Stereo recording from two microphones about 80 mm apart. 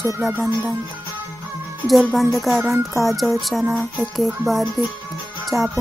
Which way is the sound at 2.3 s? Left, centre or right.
Centre.